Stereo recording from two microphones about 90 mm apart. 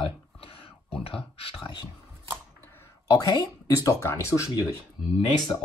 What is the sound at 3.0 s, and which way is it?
Speech, 40° left (ahead or behind).